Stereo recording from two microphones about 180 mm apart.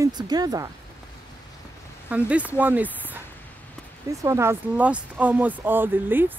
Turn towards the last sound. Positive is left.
turn(degrees=-10)  # may be behind; listen again after turning